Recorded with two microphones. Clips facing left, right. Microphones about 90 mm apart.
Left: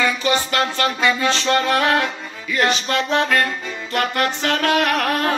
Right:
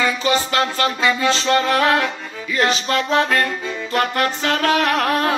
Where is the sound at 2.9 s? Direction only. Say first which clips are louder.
Right 1 dB; 40° right (ahead or behind).